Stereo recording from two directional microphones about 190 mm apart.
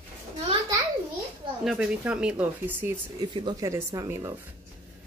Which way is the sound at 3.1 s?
20° right (ahead or behind).